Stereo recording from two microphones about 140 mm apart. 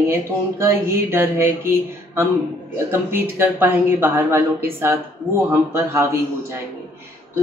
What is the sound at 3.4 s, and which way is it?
A woman's voice, 15° right (ahead or behind).